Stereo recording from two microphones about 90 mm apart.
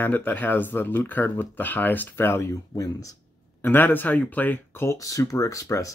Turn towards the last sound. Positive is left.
turn(degrees=35)  # may be behind; listen again after turning